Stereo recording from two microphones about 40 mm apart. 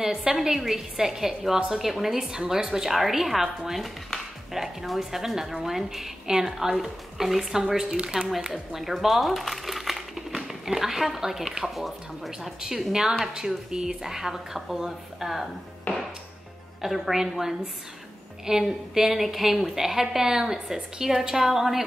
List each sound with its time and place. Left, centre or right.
0.0 s a woman's voice: centre
12.3 s a woman's voice: centre
15.9 s a sound: left
16.8 s a woman's voice: centre